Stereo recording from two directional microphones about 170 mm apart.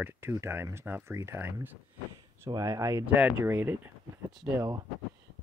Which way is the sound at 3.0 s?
10° right (ahead or behind).